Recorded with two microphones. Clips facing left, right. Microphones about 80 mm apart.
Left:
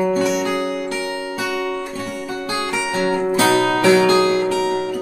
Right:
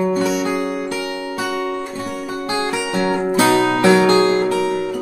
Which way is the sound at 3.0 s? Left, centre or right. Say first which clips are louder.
Right 1 dB; right.